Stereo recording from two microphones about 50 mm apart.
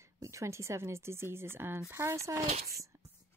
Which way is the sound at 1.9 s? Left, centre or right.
Right.